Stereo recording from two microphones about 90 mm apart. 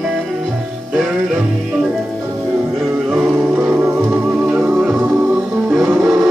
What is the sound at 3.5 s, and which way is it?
Music, 20° right (ahead or behind).